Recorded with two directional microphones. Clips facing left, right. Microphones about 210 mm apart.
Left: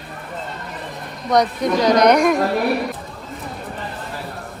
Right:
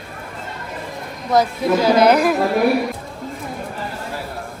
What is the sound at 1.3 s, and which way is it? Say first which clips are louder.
Speech: right 1 dB; 5° right (ahead or behind).